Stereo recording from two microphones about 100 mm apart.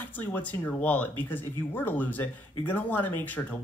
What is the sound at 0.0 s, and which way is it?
Speech, 20° left (ahead or behind).